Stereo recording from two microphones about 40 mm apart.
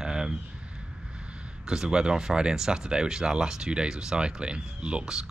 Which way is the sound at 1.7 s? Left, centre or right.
Centre.